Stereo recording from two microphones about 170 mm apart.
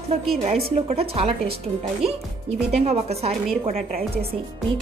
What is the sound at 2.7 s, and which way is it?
Speech, 40° right (ahead or behind).